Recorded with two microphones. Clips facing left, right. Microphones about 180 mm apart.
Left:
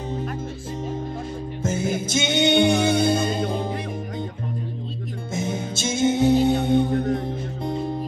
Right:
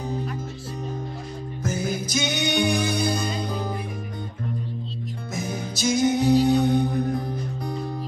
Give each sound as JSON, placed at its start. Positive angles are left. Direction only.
{"t": 1.6, "sound": "music", "side_deg": 25}
{"t": 5.3, "sound": "music", "side_deg": 25}